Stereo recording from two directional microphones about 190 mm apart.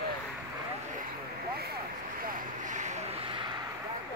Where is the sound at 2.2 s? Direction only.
45° right (ahead or behind); by 3.5 s 25° right (ahead or behind).